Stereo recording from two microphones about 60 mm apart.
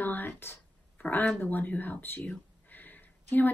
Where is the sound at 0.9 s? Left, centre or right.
Left.